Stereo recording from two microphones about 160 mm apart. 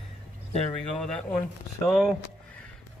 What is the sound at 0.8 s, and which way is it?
A man's voice, 5° left (ahead or behind).